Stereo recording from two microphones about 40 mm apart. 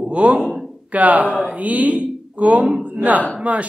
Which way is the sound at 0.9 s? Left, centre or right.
Right.